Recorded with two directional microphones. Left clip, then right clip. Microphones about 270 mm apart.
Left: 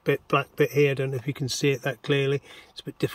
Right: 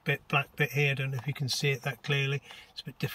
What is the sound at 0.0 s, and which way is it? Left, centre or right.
Speech, centre.